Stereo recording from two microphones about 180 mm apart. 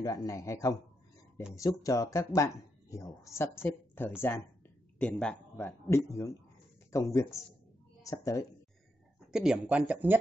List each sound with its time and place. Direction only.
0.0 s speech: 20° left (ahead or behind)
9.3 s speech: 5° right (ahead or behind)